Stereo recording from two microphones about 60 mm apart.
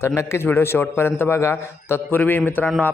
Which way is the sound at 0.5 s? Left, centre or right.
Left.